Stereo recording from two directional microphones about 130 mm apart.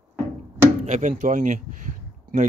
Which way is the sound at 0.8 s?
65° right (ahead or behind).